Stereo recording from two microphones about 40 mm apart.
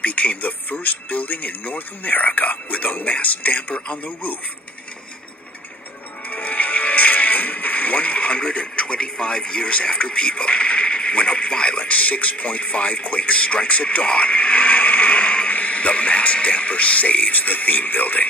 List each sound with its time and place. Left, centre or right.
0.0 s a man's voice: left
6.3 s speech: left